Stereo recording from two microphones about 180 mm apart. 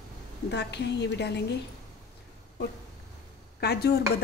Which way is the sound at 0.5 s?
70° left (ahead or behind).